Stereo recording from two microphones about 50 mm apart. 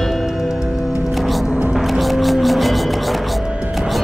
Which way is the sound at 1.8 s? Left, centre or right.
Centre.